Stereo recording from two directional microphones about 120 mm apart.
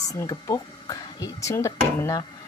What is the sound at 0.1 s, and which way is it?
Speech, 30° left (ahead or behind).